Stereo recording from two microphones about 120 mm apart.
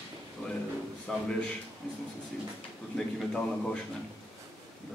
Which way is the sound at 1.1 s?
5° left (ahead or behind).